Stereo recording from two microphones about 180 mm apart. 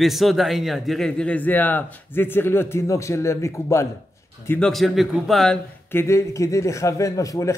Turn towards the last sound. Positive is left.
turn(degrees=20)  # may be behind; listen again after turning